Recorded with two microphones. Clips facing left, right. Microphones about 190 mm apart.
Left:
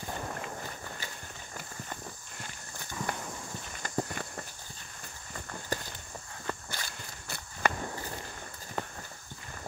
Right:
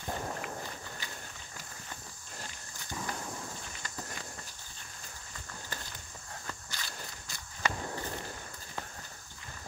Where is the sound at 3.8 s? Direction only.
50° left (ahead or behind).